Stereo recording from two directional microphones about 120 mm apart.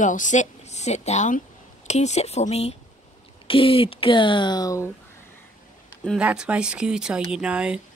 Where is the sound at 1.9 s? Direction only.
70° left (ahead or behind).